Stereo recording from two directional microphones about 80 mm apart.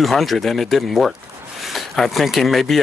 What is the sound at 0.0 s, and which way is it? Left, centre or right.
Speech, centre.